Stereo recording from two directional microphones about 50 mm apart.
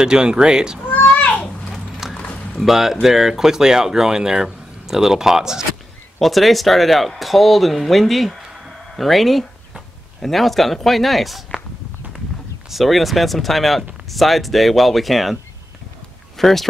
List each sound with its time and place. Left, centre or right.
0.0 s speech: centre
0.8 s children playing: left
1.1 s a sound: left
1.7 s a sound: centre
2.6 s speech: centre
6.1 s speech: centre
12.6 s speech: centre
16.3 s speech: centre